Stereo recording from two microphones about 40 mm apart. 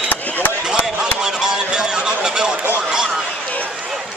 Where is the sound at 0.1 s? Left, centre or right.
Left.